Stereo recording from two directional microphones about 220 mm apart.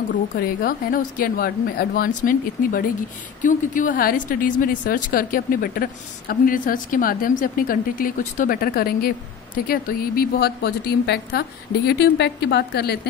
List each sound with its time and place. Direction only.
0.1 s a woman's voice: 40° left (ahead or behind)